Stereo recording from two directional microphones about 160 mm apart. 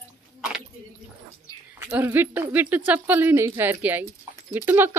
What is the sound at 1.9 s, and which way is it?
Speech, 15° right (ahead or behind).